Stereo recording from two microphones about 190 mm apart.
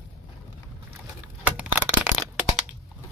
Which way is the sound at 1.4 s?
10° right (ahead or behind).